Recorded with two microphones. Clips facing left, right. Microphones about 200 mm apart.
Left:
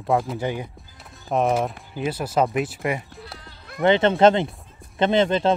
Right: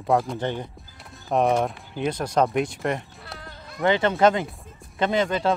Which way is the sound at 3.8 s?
20° left (ahead or behind).